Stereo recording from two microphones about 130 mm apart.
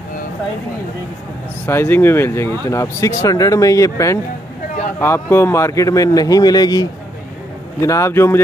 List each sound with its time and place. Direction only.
1.7 s speech: 15° left (ahead or behind)